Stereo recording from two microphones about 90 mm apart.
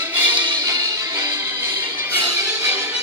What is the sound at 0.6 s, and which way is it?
Music, 35° right (ahead or behind).